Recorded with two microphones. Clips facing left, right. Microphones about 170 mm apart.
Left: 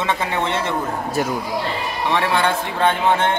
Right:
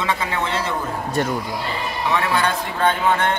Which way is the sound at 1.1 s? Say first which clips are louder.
Right 1 dB; 5° left (ahead or behind).